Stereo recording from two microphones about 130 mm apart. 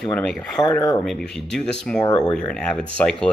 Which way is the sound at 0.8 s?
25° left (ahead or behind).